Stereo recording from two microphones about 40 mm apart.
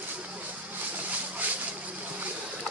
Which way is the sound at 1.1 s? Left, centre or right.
Right.